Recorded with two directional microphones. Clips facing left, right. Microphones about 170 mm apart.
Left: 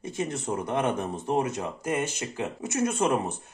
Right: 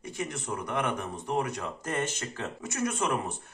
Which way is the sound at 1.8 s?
10° left (ahead or behind).